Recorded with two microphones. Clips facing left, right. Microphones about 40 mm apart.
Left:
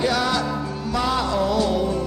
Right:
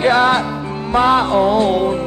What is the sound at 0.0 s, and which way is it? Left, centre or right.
Music, right.